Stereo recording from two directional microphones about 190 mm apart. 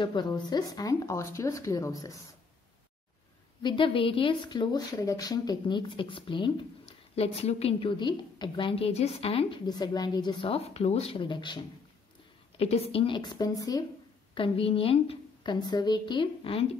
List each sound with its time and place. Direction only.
0.0 s speech: 25° left (ahead or behind)
3.6 s speech: 25° left (ahead or behind)